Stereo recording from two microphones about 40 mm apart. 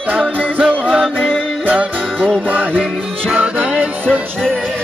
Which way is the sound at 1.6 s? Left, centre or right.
Right.